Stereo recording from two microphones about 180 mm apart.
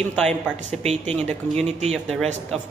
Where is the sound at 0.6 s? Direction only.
40° right (ahead or behind).